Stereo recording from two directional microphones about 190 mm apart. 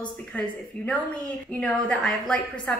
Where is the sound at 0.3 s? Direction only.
5° left (ahead or behind).